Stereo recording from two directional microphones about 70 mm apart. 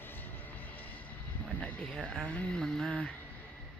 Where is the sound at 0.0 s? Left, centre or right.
Left.